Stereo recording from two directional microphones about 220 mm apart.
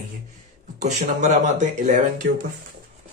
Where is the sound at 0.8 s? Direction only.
35° right (ahead or behind).